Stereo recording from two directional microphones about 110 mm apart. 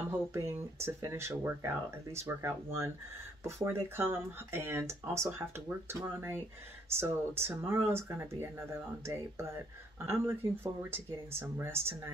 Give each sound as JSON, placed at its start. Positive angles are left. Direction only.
{"t": 0.3, "sound": "speech", "side_deg": -25}
{"t": 6.9, "sound": "speech", "side_deg": -20}